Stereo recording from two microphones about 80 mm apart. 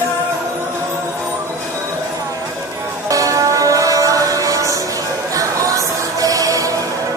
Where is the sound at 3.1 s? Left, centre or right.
Right.